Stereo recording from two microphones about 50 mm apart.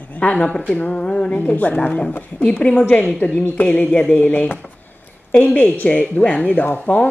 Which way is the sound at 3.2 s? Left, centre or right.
Left.